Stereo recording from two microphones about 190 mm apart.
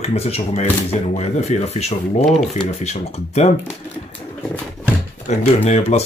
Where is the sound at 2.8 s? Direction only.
35° left (ahead or behind).